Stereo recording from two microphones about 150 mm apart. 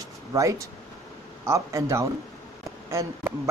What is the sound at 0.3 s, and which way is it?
Speech, 20° right (ahead or behind).